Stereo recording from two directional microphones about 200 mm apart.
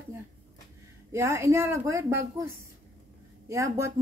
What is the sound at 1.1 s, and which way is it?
A woman's voice, 15° right (ahead or behind).